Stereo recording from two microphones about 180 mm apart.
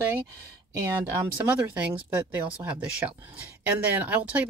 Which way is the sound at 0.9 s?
10° right (ahead or behind).